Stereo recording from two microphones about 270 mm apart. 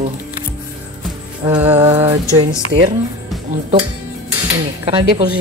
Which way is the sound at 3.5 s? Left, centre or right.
Right.